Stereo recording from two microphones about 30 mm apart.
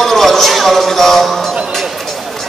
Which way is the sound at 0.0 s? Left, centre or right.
Centre.